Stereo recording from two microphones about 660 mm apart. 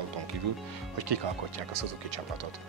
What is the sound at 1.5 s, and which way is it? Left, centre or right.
Speech, right.